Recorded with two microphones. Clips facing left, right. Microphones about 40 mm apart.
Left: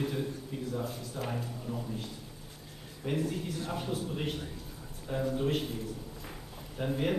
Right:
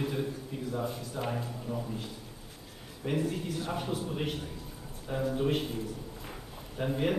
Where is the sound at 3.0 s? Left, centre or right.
Centre.